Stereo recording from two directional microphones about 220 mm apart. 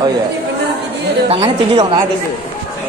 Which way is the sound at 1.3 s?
25° right (ahead or behind).